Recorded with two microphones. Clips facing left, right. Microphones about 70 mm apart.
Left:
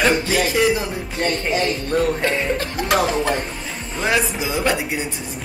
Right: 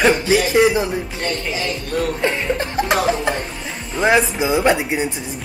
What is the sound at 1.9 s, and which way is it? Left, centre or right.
Speech, left.